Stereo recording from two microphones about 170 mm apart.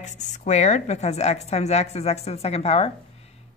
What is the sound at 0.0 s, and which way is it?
A woman's voice, 45° left (ahead or behind).